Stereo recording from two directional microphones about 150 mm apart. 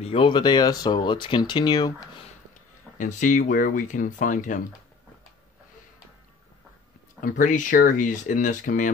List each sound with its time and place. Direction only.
0.0 s speech: 35° left (ahead or behind)
3.0 s speech: 55° left (ahead or behind)
7.2 s speech: 60° left (ahead or behind)